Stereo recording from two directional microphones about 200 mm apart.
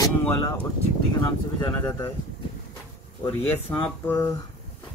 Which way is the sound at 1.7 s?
10° left (ahead or behind).